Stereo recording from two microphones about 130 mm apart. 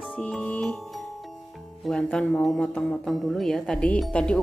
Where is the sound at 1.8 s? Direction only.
5° left (ahead or behind).